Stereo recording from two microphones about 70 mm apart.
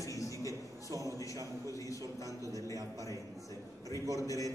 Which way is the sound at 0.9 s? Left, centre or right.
Right.